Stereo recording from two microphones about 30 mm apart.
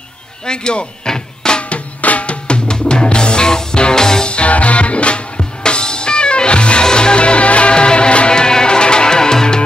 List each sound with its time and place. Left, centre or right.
0.5 s music: left
1.7 s drum: left
3.9 s music: left
4.3 s music: left
8.3 s music: left